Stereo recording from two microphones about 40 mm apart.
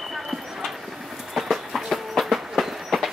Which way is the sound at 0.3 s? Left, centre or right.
Centre.